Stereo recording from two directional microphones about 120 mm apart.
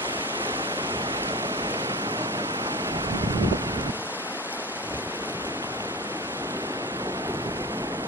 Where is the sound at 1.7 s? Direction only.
20° right (ahead or behind).